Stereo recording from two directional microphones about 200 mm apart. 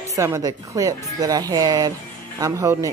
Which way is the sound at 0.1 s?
15° right (ahead or behind).